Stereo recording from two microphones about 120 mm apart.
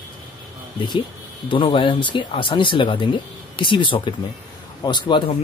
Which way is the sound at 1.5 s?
45° left (ahead or behind).